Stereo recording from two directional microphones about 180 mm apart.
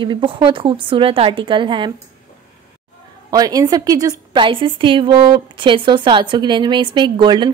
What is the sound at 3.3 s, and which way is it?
A woman's voice, 20° right (ahead or behind).